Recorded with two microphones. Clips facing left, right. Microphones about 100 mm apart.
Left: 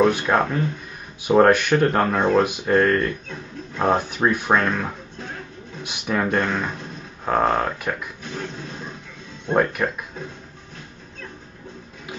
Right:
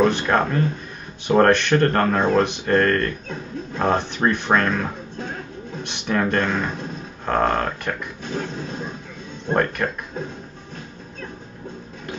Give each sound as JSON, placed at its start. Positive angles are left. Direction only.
{"t": 0.0, "sound": "speech", "side_deg": 5}
{"t": 8.3, "sound": "a sound", "side_deg": -35}
{"t": 9.5, "sound": "speech", "side_deg": 5}